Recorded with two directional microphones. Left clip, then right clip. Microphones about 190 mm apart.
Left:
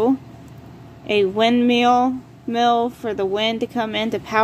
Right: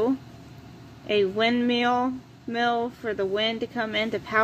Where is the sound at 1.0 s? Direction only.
10° left (ahead or behind).